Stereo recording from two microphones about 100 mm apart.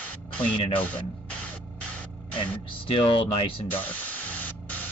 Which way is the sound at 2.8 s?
60° left (ahead or behind).